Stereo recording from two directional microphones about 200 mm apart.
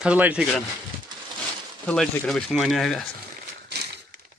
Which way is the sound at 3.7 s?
55° right (ahead or behind).